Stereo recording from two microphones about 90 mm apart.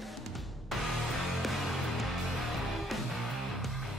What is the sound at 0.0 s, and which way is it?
Music, centre (ahead or behind).